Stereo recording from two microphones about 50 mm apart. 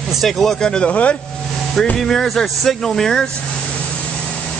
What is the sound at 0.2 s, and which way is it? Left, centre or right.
Speech, centre.